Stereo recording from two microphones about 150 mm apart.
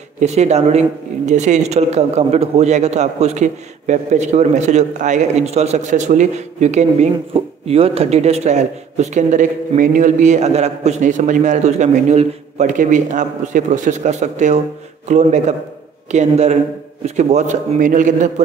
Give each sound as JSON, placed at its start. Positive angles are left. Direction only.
{"t": 0.2, "sound": "speech", "side_deg": -50}